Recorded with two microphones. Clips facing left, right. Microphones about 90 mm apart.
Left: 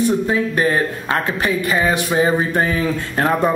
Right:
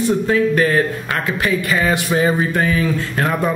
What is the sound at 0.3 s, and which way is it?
A man's voice, 20° left (ahead or behind).